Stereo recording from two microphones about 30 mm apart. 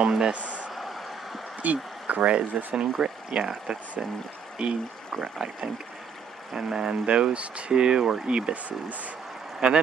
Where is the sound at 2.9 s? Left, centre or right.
Right.